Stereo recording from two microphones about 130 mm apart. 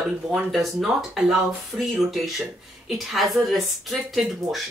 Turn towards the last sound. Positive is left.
turn(degrees=0)  # may be behind; listen again after turning